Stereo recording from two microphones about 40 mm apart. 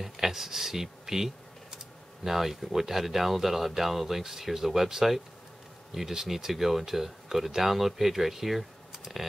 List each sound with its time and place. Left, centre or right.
0.0 s speech: centre